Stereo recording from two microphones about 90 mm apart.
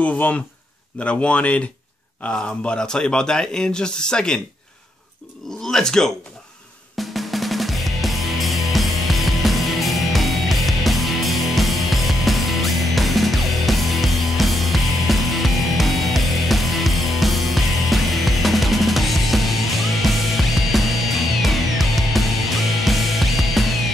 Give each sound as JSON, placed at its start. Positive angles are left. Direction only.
{"t": 0.0, "sound": "a man's voice", "side_deg": 15}
{"t": 5.6, "sound": "speech", "side_deg": 5}
{"t": 7.0, "sound": "music", "side_deg": 0}